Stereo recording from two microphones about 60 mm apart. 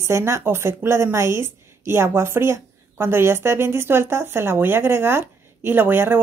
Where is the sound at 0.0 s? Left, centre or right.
Right.